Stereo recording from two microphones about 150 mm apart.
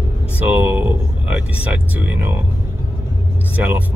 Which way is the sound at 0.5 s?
15° right (ahead or behind).